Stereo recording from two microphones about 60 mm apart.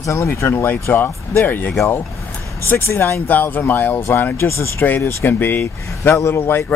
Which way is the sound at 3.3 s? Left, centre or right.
Left.